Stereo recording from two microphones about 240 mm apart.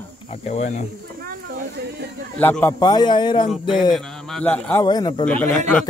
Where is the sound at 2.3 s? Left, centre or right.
Centre.